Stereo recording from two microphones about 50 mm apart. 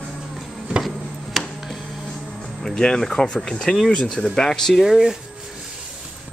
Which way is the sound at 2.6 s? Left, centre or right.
Centre.